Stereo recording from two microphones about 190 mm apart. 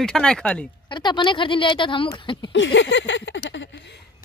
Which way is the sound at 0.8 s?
25° left (ahead or behind).